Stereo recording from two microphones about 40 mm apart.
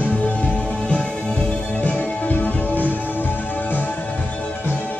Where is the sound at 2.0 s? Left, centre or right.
Left.